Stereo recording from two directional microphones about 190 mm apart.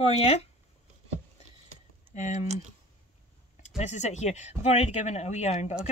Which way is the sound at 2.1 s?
40° left (ahead or behind).